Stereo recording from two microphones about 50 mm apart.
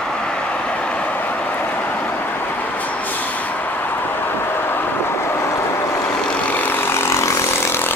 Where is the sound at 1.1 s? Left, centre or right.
Left.